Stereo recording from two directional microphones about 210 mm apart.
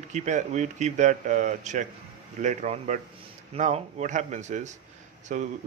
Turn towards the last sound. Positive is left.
turn(degrees=-35)  # may be behind; listen again after turning